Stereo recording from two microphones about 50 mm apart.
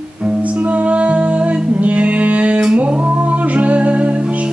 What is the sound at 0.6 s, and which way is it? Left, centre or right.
Music, right.